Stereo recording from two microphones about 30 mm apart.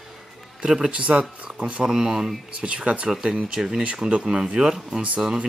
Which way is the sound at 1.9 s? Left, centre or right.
Centre.